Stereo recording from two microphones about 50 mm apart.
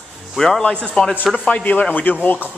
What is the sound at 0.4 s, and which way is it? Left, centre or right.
Speech, centre.